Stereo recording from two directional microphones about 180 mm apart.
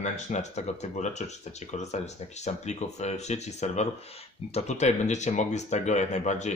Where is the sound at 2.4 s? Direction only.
40° left (ahead or behind).